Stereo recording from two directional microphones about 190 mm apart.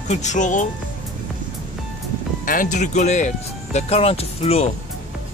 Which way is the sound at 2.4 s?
45° left (ahead or behind).